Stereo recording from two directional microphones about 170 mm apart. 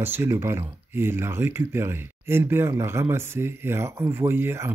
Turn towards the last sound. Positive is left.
turn(degrees=-15)  # may be behind; listen again after turning